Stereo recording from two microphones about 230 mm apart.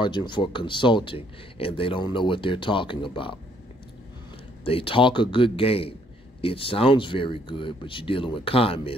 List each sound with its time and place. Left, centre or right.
0.0 s speech: centre
4.6 s speech: left